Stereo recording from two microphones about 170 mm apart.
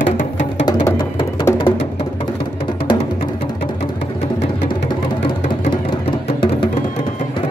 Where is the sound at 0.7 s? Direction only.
20° left (ahead or behind).